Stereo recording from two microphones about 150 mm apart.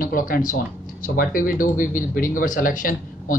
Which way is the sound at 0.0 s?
65° left (ahead or behind).